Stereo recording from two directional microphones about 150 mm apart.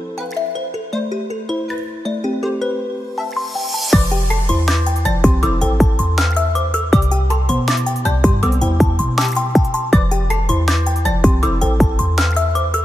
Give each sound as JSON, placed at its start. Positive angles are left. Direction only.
{"t": 3.9, "sound": "music", "side_deg": 0}